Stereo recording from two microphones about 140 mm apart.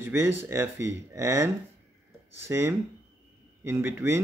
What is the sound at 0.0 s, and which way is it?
Speech, 15° right (ahead or behind).